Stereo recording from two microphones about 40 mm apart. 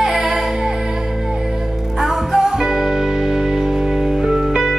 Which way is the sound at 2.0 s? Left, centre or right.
Centre.